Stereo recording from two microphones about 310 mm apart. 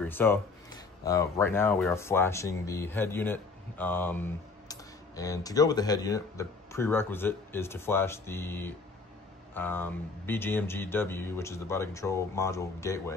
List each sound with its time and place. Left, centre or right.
0.0 s speech: centre